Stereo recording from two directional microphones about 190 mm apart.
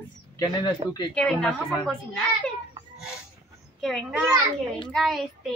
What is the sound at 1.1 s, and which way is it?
Speech, 5° left (ahead or behind).